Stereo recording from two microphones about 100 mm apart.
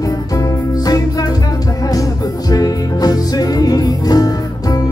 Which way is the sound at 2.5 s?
40° left (ahead or behind).